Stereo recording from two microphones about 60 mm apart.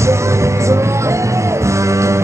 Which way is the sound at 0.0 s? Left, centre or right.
Right.